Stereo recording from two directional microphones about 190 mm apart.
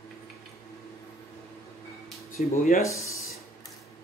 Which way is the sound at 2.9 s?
15° left (ahead or behind).